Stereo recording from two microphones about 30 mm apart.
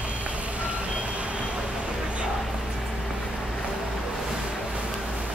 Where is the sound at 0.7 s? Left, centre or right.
Right.